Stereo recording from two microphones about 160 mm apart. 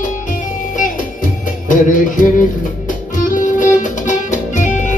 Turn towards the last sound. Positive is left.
turn(degrees=50)  # may be behind; listen again after turning